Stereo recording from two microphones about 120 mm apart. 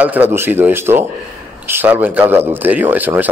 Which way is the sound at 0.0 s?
15° right (ahead or behind).